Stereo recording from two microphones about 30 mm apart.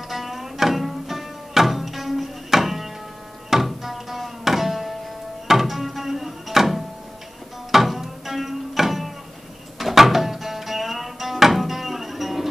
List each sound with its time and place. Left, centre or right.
0.1 s music: centre
3.4 s tabla: centre
5.5 s a sound: centre
7.7 s music: centre